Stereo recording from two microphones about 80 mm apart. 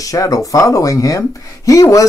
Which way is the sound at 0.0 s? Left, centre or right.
Left.